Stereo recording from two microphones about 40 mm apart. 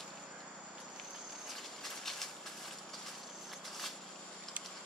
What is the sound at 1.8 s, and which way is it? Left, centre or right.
Train, centre.